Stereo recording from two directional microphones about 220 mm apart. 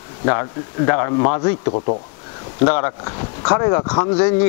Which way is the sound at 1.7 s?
30° left (ahead or behind).